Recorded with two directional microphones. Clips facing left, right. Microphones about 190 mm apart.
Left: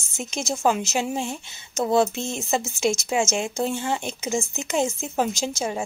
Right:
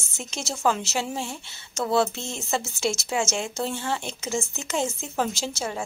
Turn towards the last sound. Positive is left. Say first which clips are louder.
# left 3 dB
turn(degrees=15)  # may be behind; listen again after turning